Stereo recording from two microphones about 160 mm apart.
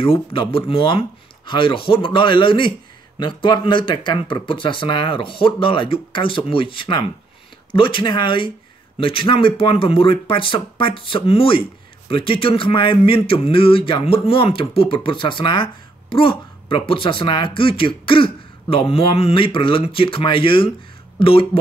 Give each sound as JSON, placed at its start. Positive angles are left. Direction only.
{"t": 0.0, "sound": "speech", "side_deg": 35}